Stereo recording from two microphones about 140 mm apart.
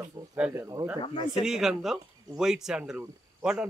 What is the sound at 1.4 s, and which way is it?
Speech, 5° right (ahead or behind).